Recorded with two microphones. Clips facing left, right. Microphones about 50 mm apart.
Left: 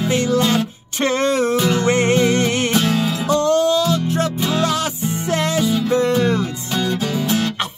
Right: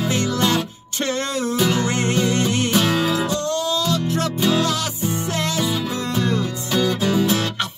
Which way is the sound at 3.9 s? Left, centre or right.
Centre.